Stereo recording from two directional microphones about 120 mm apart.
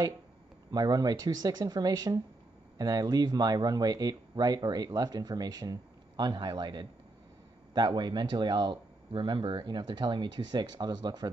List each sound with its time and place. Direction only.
0.7 s speech: 35° right (ahead or behind)